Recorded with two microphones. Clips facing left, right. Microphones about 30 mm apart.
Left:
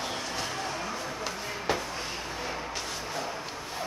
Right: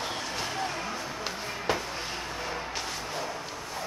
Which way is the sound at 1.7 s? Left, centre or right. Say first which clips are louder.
Even; centre.